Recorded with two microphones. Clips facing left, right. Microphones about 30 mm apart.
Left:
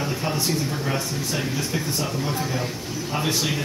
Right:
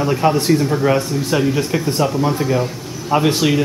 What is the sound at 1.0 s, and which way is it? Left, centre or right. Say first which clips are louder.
Speech: right 9 dB; right.